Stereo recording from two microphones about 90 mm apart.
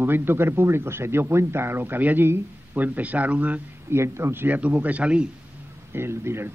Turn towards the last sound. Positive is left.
turn(degrees=-30)  # may be behind; listen again after turning